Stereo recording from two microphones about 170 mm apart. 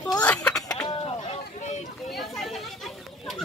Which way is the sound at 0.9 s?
35° left (ahead or behind).